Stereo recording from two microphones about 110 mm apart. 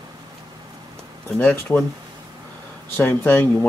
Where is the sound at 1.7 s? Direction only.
20° left (ahead or behind).